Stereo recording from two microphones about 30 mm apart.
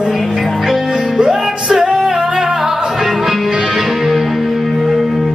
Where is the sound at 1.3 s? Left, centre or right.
Centre.